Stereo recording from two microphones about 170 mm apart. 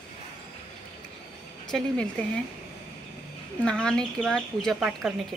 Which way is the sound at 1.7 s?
5° left (ahead or behind).